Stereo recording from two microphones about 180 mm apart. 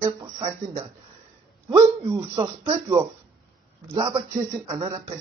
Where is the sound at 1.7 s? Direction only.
25° right (ahead or behind).